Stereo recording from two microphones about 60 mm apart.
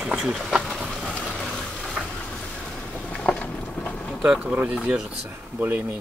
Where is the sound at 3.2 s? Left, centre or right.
Centre.